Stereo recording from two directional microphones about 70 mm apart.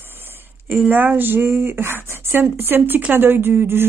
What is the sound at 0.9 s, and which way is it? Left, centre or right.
Speech, right.